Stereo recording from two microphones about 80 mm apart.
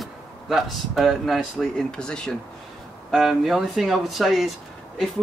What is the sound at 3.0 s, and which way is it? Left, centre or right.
Speech, centre.